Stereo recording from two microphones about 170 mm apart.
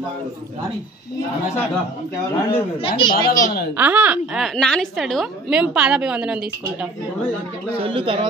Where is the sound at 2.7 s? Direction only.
30° left (ahead or behind).